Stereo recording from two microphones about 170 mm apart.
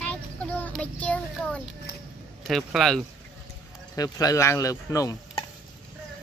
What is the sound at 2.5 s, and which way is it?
Speech, centre (ahead or behind).